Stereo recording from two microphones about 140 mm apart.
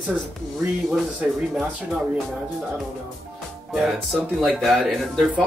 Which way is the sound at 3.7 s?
Centre (ahead or behind).